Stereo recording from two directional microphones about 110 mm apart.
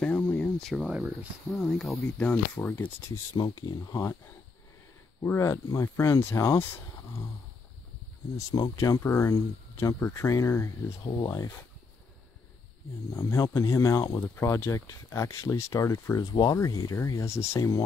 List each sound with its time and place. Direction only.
0.0 s speech: 5° left (ahead or behind)
3.3 s speech: 40° left (ahead or behind)
5.2 s speech: 20° left (ahead or behind)
8.4 s speech: 35° left (ahead or behind)
13.1 s speech: 25° left (ahead or behind)